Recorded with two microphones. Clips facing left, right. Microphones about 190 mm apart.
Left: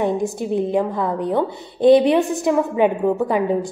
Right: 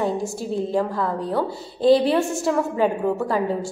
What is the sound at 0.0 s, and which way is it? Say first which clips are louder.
A woman's voice: left 4 dB; 20° left (ahead or behind).